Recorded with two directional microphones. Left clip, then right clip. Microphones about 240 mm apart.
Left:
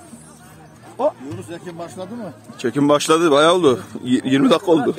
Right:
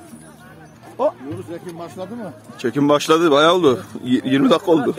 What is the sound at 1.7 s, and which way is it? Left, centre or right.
Speech, centre.